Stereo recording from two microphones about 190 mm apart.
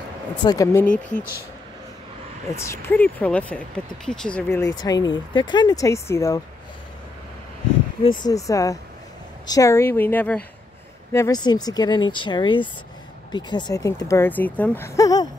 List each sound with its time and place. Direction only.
0.4 s speech: 20° left (ahead or behind)
2.5 s speech: 15° left (ahead or behind)
4.7 s speech: 20° left (ahead or behind)
8.0 s speech: 25° left (ahead or behind); by 10.4 s 10° left (ahead or behind)
11.1 s speech: 20° left (ahead or behind)